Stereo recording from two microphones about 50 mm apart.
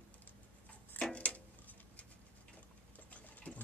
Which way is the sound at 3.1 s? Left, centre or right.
Left.